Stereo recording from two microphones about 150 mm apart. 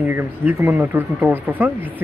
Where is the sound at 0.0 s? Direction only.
15° right (ahead or behind).